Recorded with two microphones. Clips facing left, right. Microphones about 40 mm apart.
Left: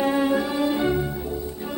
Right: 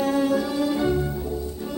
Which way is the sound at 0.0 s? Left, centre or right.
Left.